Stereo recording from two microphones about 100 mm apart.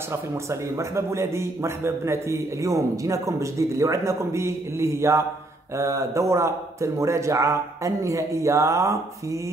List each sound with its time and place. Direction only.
0.1 s a man's voice: 30° right (ahead or behind)